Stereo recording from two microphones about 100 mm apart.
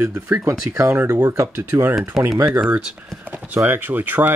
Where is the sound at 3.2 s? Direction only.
15° right (ahead or behind).